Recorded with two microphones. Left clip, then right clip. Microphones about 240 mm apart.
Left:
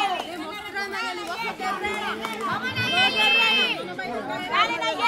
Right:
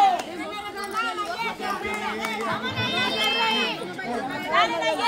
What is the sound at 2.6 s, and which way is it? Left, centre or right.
Run, left.